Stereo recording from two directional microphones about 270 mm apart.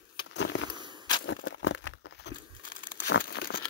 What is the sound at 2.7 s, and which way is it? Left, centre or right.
Crumpling, left.